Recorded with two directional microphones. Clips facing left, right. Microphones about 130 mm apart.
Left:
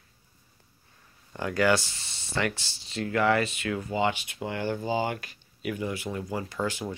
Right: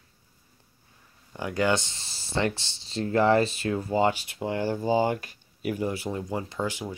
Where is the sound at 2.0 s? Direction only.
Centre (ahead or behind).